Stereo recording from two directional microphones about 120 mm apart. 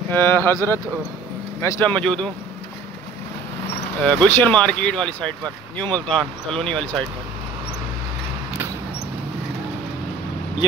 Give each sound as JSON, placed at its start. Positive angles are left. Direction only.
{"t": 0.1, "sound": "speech", "side_deg": 20}
{"t": 1.9, "sound": "speech", "side_deg": 5}
{"t": 4.0, "sound": "speech", "side_deg": 10}